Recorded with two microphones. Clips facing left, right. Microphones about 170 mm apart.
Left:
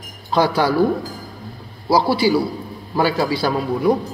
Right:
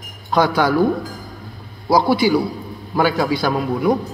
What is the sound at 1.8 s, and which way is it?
A man's voice, 5° left (ahead or behind).